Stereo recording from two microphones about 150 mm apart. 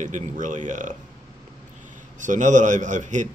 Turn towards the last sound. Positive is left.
turn(degrees=-55)  # may be behind; listen again after turning